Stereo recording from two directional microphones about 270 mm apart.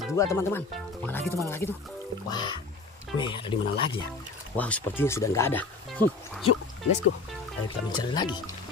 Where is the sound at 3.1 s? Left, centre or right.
Centre.